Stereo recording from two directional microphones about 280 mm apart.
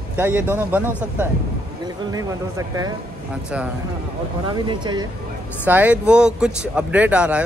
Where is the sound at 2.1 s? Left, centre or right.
Centre.